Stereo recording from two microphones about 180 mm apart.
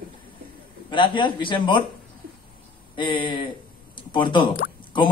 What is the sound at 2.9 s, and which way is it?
A man's voice, 25° left (ahead or behind).